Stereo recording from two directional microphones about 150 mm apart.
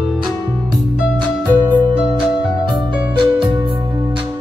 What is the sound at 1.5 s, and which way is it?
Music, 10° right (ahead or behind).